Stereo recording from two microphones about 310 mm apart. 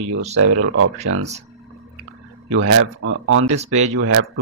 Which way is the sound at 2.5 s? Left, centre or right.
Right.